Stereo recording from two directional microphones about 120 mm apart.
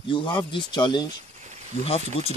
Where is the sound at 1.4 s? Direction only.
75° right (ahead or behind).